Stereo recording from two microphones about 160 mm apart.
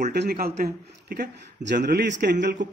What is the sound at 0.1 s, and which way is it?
A man's voice, 85° right.